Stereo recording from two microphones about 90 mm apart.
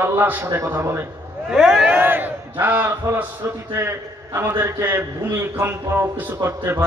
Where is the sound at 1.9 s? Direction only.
20° right (ahead or behind).